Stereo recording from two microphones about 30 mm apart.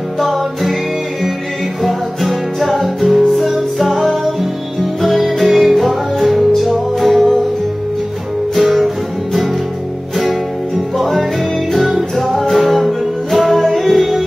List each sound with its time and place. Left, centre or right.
0.2 s music: centre
1.8 s music: centre
8.5 s music: centre
11.0 s music: centre